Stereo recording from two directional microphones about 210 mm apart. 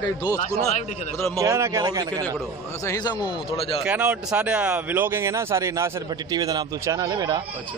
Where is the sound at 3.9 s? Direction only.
5° right (ahead or behind).